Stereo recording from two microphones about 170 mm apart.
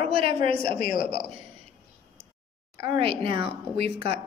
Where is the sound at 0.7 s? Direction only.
50° left (ahead or behind).